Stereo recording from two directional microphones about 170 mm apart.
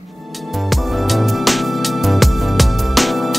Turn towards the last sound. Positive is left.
turn(degrees=0)  # may be behind; listen again after turning